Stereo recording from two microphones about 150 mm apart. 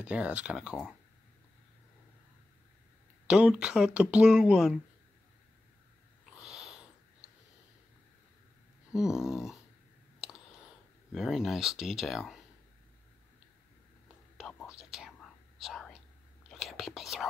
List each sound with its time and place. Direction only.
0.0 s speech: 10° right (ahead or behind)
3.3 s speech: 5° right (ahead or behind)
6.3 s wheeze: 5° right (ahead or behind)
8.9 s speech: 5° right (ahead or behind)
10.2 s a sound: 5° right (ahead or behind)
11.1 s speech: centre (ahead or behind)
14.3 s whispering: centre (ahead or behind)